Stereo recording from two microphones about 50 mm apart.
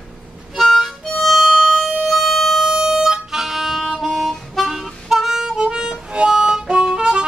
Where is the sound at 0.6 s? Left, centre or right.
Centre.